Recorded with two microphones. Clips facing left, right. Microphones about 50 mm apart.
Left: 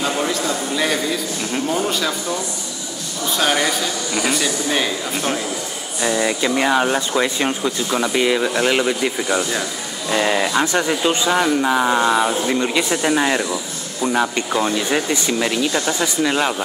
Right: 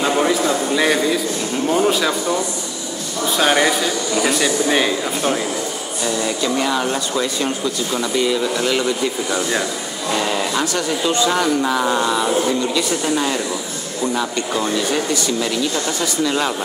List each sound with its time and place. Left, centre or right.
0.0 s a sound: centre
1.9 s speech: centre
3.3 s speech: centre
6.0 s speech: left
11.2 s speech: centre